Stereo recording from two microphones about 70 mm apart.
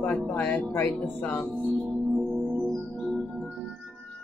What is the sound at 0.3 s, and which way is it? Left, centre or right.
Music, left.